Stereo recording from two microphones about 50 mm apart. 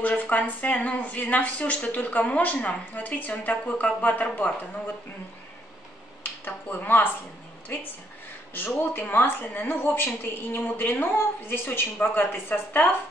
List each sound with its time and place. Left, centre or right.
0.0 s a woman's voice: left
6.4 s a woman's voice: left